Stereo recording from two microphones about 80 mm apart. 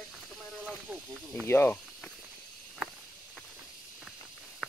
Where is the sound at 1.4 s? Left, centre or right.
Left.